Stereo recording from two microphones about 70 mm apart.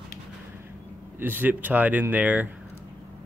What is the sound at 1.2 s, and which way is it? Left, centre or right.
Speech, right.